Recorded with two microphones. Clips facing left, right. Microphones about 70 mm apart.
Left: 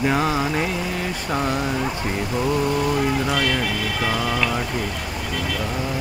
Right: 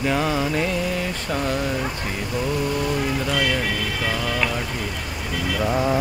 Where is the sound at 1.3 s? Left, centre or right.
Left.